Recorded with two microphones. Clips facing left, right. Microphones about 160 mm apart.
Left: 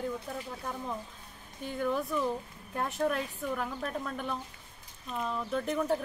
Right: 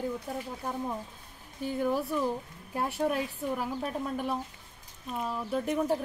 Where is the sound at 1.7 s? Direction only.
35° right (ahead or behind).